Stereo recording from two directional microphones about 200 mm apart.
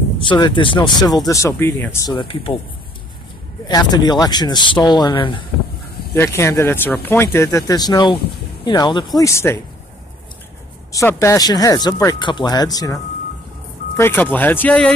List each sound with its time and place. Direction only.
0.3 s speech: 25° left (ahead or behind)
3.6 s speech: 20° left (ahead or behind)
6.1 s speech: 15° left (ahead or behind)
10.9 s speech: 15° left (ahead or behind)